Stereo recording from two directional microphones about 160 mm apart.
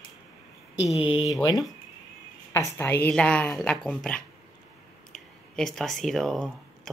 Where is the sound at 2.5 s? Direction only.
15° left (ahead or behind).